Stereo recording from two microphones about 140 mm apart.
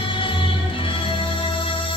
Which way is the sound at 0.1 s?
35° left (ahead or behind).